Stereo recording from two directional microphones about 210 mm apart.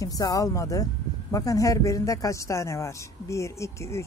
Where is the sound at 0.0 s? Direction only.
15° left (ahead or behind).